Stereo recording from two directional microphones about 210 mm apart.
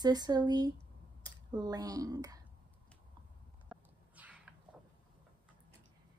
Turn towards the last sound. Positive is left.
turn(degrees=-5)  # may be behind; listen again after turning